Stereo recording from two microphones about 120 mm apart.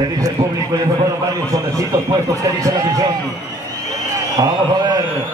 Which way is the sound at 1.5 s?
30° right (ahead or behind).